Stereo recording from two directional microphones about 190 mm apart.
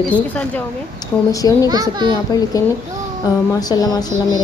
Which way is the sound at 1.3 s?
20° left (ahead or behind).